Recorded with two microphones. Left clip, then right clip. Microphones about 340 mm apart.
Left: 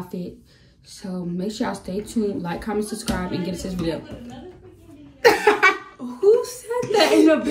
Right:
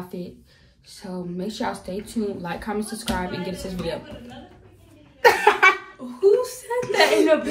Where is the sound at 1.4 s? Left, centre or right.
Centre.